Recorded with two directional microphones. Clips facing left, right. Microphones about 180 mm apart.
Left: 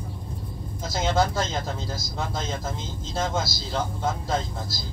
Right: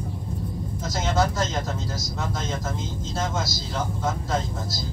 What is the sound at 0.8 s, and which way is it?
Speech, 30° left (ahead or behind).